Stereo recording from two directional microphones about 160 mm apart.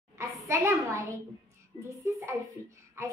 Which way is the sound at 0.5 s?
15° right (ahead or behind).